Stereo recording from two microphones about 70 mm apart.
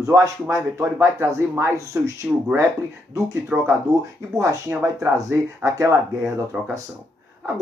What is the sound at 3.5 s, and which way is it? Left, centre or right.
Speech, centre.